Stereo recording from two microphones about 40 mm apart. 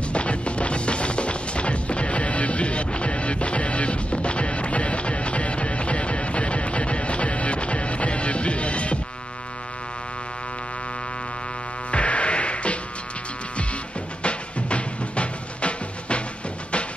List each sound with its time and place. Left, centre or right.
0.1 s music: left
11.9 s music: left
14.2 s music: left